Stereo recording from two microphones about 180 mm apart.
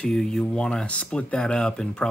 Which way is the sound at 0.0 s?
Centre (ahead or behind).